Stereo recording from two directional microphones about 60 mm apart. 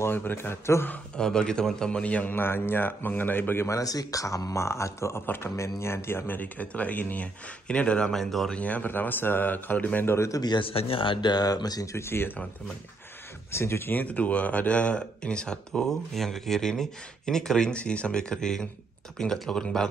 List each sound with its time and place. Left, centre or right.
0.1 s speech: left
1.1 s a man's voice: centre; by 3.6 s left
3.6 s speech: left
6.3 s a man's voice: left
7.6 s a man's voice: centre
8.1 s speech: centre
8.5 s a man's voice: left
10.0 s speech: left
11.4 s speech: left
12.0 s speech: left
13.5 s speech: left
14.0 s speech: left